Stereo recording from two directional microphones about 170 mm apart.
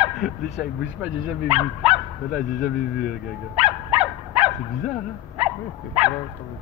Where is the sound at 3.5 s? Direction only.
5° right (ahead or behind).